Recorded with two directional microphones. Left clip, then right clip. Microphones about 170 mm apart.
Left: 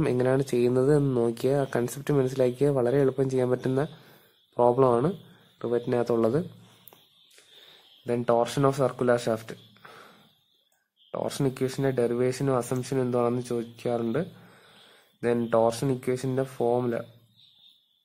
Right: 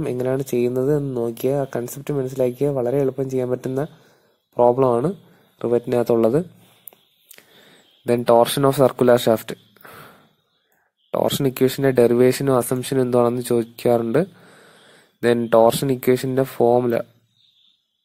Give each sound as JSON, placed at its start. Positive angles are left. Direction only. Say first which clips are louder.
{"t": 0.0, "sound": "speech", "louder": "right 2 dB", "side_deg": -10}
{"t": 8.0, "sound": "speech", "louder": "right 9 dB", "side_deg": -30}
{"t": 15.1, "sound": "speech", "louder": "right 9 dB", "side_deg": -30}